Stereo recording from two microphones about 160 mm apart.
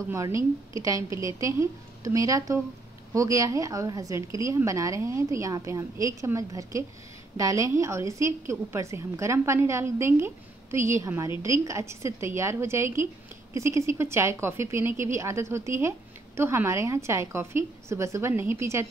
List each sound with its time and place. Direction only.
0.1 s a woman's voice: 20° right (ahead or behind)